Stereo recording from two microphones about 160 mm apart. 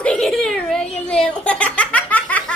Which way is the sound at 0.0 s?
5° left (ahead or behind).